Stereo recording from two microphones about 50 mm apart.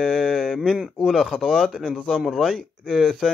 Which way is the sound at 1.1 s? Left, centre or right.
Centre.